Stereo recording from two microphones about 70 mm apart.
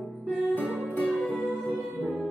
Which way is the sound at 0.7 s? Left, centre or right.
Centre.